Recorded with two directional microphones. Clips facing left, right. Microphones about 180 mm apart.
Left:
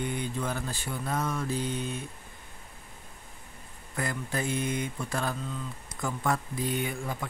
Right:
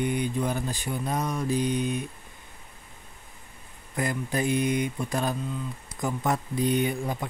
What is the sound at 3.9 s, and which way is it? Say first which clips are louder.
Speech: right 4 dB; 15° right (ahead or behind).